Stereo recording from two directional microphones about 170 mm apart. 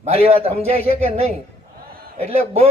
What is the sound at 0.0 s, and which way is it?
Speech, 35° right (ahead or behind).